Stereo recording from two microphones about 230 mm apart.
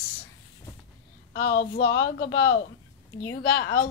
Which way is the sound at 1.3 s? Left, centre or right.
Left.